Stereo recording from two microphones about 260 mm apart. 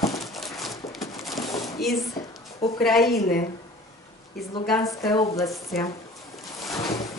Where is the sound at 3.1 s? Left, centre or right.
Left.